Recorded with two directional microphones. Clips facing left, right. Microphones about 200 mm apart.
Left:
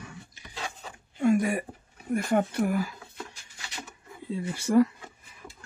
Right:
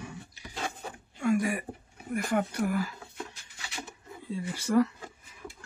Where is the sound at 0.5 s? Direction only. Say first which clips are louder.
Right 2 dB; 55° right (ahead or behind).